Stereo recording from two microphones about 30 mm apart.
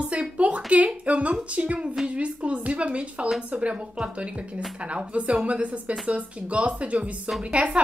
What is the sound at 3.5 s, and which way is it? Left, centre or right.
A woman's voice, right.